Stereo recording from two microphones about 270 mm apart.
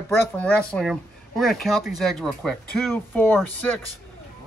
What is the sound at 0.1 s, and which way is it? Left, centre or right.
Speech, centre.